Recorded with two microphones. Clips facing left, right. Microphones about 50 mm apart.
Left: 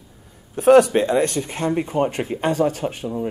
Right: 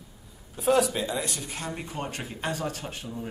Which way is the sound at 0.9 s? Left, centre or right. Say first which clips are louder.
Left 12 dB; left.